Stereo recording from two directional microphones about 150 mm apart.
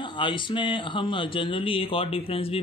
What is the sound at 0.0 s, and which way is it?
Speech, 35° left (ahead or behind).